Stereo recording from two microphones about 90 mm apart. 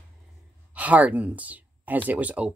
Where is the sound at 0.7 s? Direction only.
15° right (ahead or behind).